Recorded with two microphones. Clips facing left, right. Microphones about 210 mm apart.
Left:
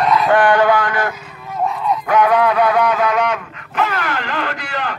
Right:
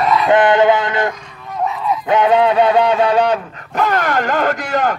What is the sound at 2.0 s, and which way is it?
Dog, 25° right (ahead or behind).